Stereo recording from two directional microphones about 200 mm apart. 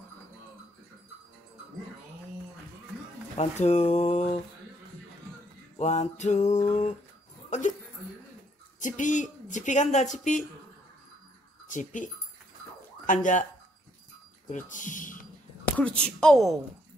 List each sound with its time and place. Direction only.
3.3 s speech: 35° left (ahead or behind)
5.8 s speech: 35° left (ahead or behind)
7.4 s dog: 35° left (ahead or behind)
8.7 s speech: 40° left (ahead or behind)
11.6 s speech: 40° left (ahead or behind)
14.5 s speech: 40° left (ahead or behind)
15.8 s speech: 5° left (ahead or behind)